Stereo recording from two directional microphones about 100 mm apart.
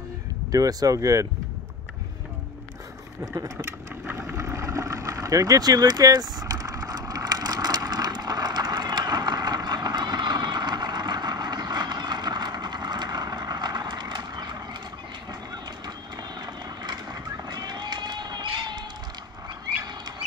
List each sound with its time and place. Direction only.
0.5 s speech: 35° right (ahead or behind)
4.3 s vehicle: 25° right (ahead or behind); by 14.8 s 45° right (ahead or behind)
16.3 s run: 45° right (ahead or behind)